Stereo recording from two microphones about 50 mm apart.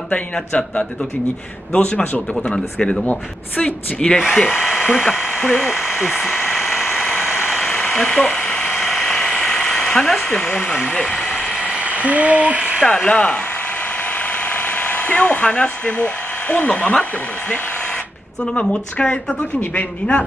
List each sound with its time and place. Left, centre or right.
0.1 s speech: left
3.1 s speech: left
4.0 s speech: centre
4.5 s speech: centre
6.2 s a sound: centre
6.9 s vehicle: left
7.4 s a sound: centre
7.9 s electric toothbrush: centre
10.5 s speech: left
10.9 s speech: centre
11.6 s a sound: right
12.8 s speech: left
14.5 s speech: left
18.4 s speech: centre